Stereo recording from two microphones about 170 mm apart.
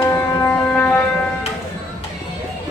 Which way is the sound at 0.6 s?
10° left (ahead or behind).